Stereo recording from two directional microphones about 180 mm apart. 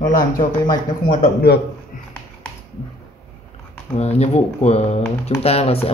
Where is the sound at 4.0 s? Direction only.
35° left (ahead or behind).